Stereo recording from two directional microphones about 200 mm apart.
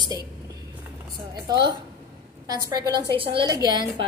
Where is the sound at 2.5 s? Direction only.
15° right (ahead or behind).